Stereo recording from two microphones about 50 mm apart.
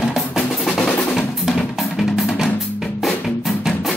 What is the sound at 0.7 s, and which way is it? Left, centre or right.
Drum, centre.